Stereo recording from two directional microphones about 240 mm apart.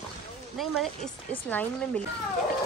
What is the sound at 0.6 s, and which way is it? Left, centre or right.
Speech, centre.